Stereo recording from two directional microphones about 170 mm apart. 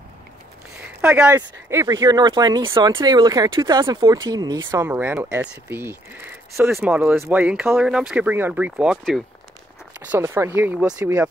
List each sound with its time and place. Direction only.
1.0 s speech: 5° right (ahead or behind)
10.0 s speech: 15° right (ahead or behind)
11.0 s speech: 20° right (ahead or behind)